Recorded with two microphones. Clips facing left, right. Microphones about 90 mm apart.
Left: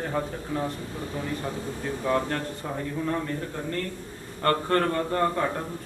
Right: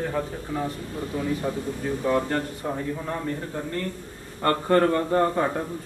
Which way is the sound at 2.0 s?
5° right (ahead or behind).